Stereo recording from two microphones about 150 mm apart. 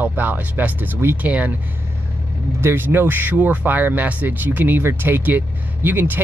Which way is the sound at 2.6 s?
15° right (ahead or behind).